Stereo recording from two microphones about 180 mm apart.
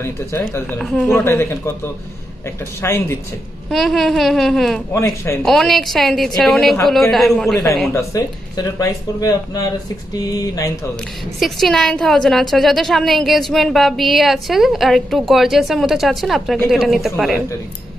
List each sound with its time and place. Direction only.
0.0 s speech: 15° left (ahead or behind)
1.3 s speech: 15° left (ahead or behind)
2.8 s speech: 15° left (ahead or behind)
3.7 s a woman's voice: centre (ahead or behind)
4.9 s speech: 15° left (ahead or behind)
5.4 s a woman's voice: centre (ahead or behind)
7.9 s speech: 15° left (ahead or behind)
11.3 s a woman's voice: centre (ahead or behind)